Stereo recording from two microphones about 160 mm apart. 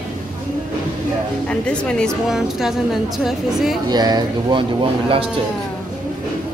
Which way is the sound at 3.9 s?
25° right (ahead or behind).